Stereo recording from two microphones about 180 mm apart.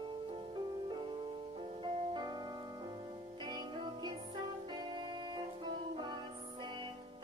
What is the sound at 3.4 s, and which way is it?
Music, 25° right (ahead or behind).